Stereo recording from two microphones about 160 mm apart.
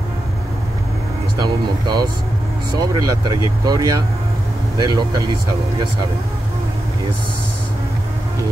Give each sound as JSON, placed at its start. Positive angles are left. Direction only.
{"t": 1.4, "sound": "speech", "side_deg": -25}